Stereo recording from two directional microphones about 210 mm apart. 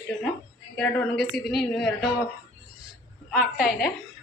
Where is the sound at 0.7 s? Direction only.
Centre (ahead or behind).